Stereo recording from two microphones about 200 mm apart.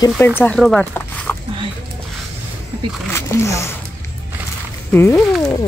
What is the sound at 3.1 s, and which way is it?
Speech, 15° left (ahead or behind).